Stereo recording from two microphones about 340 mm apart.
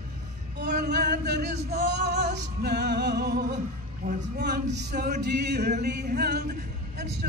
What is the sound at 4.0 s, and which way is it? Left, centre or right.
Male singing, right.